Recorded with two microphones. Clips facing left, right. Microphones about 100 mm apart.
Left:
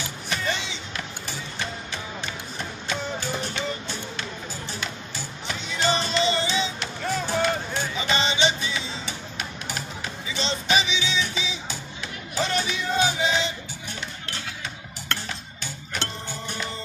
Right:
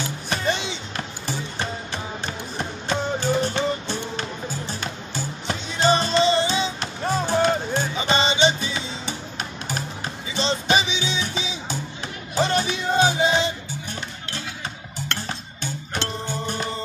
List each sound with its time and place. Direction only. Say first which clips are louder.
0.5 s music: right 4 dB; 35° right (ahead or behind)
4.7 s music: right 3 dB; 40° right (ahead or behind)
15.2 s music: right 4 dB; 40° right (ahead or behind)